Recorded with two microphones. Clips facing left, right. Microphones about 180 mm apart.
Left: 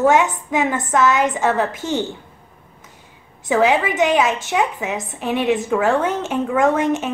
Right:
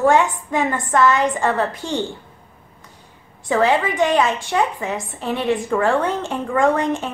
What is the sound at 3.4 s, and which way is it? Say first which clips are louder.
A woman's voice: left 1 dB; 5° left (ahead or behind).